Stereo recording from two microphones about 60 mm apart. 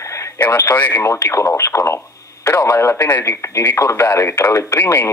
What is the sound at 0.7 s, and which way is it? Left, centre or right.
Speech, left.